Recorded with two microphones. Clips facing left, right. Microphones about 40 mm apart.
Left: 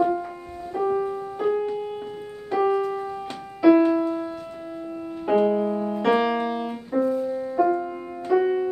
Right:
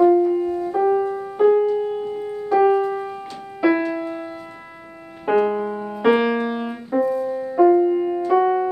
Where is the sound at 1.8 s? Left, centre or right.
Centre.